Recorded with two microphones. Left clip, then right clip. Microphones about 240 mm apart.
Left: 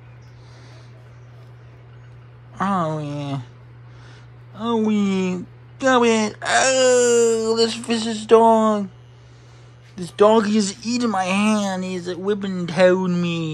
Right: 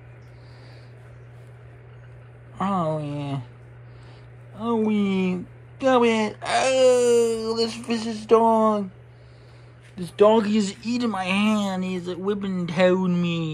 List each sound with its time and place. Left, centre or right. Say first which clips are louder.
2.5 s speech: left 3 dB; centre
4.6 s speech: left 2 dB; centre
9.9 s speech: left 2 dB; centre